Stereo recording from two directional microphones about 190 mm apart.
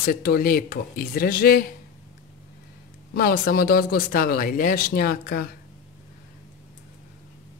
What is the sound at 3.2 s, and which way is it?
Speech, 50° left (ahead or behind).